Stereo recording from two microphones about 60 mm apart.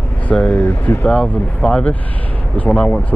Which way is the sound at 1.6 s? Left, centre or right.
Centre.